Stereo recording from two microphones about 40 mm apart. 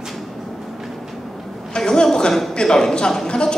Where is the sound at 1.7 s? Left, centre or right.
Centre.